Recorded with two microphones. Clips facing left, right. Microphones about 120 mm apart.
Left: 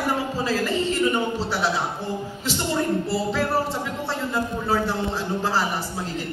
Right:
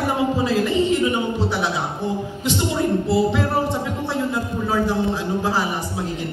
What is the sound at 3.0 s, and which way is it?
Speech, 20° right (ahead or behind).